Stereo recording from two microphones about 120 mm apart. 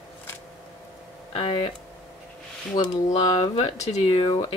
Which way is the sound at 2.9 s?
60° left (ahead or behind).